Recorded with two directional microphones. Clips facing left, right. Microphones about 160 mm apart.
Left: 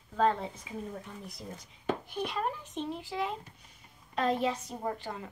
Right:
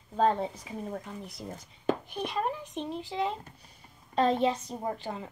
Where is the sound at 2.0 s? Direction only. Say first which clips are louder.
Right 2 dB; 15° right (ahead or behind).